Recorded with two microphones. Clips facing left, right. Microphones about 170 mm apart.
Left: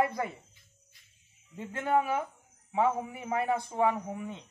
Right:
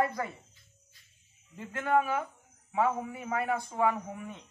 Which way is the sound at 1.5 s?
20° left (ahead or behind).